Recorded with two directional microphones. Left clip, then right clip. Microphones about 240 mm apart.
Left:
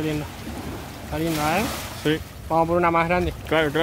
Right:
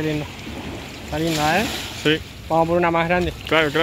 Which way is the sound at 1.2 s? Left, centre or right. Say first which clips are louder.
Right 3 dB; centre.